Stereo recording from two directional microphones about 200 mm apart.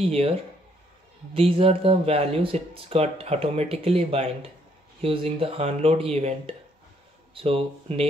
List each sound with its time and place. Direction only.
0.0 s speech: 30° right (ahead or behind)
1.3 s speech: 30° right (ahead or behind)